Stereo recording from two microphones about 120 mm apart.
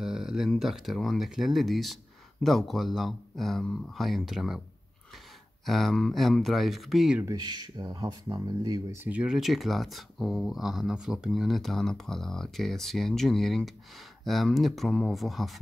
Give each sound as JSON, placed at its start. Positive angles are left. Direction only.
{"t": 0.0, "sound": "speech", "side_deg": -5}
{"t": 5.7, "sound": "speech", "side_deg": 0}
{"t": 7.2, "sound": "speech", "side_deg": -35}
{"t": 8.9, "sound": "speech", "side_deg": -15}